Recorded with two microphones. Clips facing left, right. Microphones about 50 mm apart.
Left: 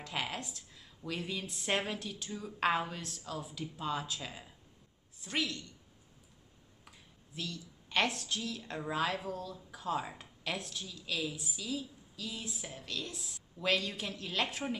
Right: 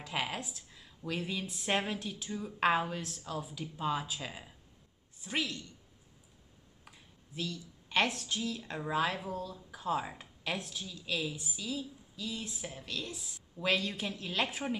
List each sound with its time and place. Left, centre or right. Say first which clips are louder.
0.0 s a woman's voice: right 2 dB; centre
7.3 s a woman's voice: right 3 dB; centre
9.3 s speech: right 2 dB; right
9.7 s a woman's voice: right 2 dB; centre